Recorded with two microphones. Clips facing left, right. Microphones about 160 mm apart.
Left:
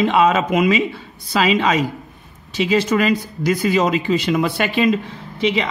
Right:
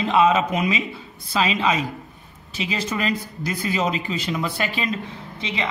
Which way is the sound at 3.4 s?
80° left.